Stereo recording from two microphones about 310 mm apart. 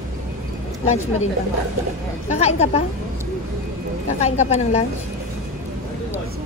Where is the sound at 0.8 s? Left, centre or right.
Left.